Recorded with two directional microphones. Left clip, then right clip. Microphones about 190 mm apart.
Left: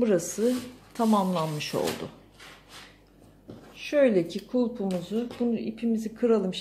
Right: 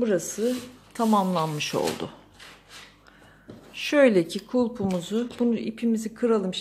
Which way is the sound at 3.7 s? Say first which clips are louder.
Right 3 dB; 30° right (ahead or behind).